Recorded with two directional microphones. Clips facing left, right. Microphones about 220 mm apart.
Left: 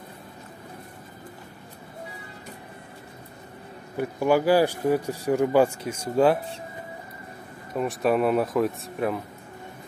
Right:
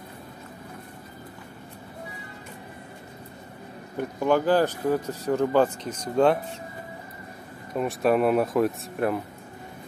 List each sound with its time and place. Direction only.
3.9 s speech: 10° left (ahead or behind)
7.7 s speech: centre (ahead or behind)